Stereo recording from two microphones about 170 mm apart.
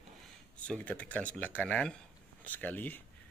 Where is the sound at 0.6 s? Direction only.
5° left (ahead or behind).